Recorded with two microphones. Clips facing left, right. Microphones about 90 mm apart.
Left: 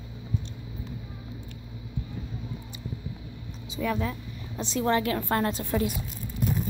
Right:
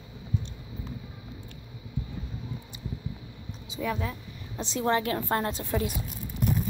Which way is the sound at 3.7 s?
10° right (ahead or behind).